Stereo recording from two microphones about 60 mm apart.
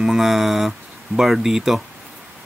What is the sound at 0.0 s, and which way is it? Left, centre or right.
Speech, centre.